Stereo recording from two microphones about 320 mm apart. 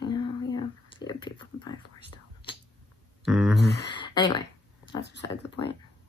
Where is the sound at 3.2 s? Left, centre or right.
Centre.